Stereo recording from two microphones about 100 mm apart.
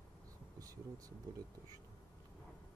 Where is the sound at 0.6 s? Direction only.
35° right (ahead or behind).